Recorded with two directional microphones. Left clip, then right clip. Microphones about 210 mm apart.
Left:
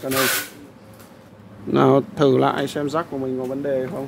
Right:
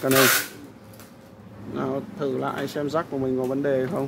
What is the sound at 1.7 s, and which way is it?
Speech, 45° left (ahead or behind).